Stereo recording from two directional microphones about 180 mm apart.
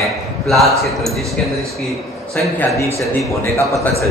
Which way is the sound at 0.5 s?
Centre (ahead or behind).